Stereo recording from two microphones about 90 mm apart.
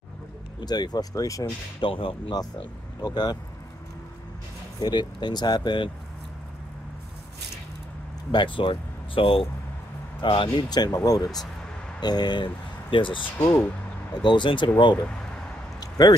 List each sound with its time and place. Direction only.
0.6 s speech: 50° left (ahead or behind)
1.8 s speech: 75° left (ahead or behind)
3.0 s speech: 45° left (ahead or behind)
4.7 s speech: 55° left (ahead or behind)
8.3 s speech: 65° left (ahead or behind)
10.7 s speech: 45° left (ahead or behind)
12.9 s speech: 70° left (ahead or behind)
15.8 s a sound: 45° left (ahead or behind)